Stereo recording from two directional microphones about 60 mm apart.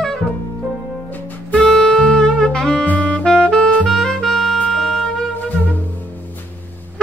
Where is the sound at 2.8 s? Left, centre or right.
Left.